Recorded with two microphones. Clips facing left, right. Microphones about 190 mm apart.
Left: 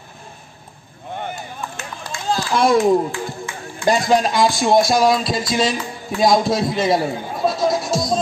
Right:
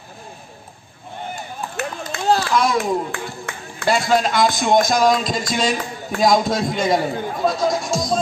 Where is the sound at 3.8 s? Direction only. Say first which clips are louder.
Left 2 dB; 40° left (ahead or behind).